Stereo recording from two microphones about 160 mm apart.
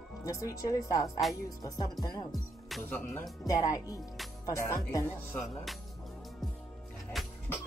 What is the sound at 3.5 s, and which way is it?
Speech, 20° left (ahead or behind).